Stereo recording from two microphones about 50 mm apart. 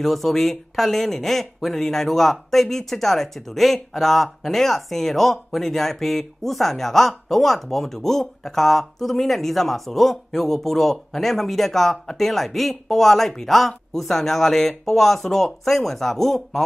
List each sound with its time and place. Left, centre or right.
0.0 s speech: centre